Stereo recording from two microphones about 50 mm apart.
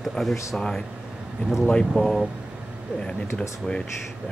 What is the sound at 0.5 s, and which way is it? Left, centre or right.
Speech, centre.